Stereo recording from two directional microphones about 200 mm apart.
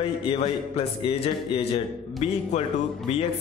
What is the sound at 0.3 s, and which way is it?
A man's voice, 30° left (ahead or behind).